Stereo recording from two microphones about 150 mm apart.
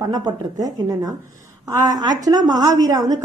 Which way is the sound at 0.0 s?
25° right (ahead or behind).